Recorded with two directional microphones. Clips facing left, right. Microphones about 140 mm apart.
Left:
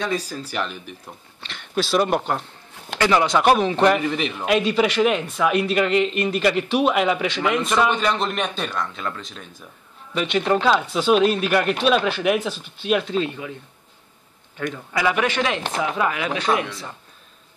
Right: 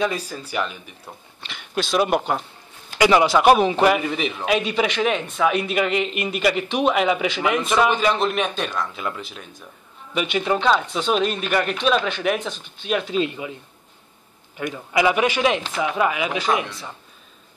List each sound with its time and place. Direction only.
0.0 s a man's voice: 5° right (ahead or behind)
3.0 s speech: 15° right (ahead or behind)
3.3 s a man's voice: 5° right (ahead or behind)
13.1 s speech: 15° right (ahead or behind)
14.6 s a man's voice: 10° right (ahead or behind)